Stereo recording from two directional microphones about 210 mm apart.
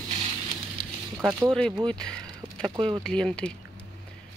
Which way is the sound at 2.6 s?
25° right (ahead or behind).